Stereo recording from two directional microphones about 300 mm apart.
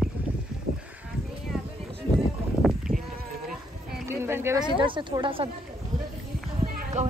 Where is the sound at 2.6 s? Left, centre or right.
Centre.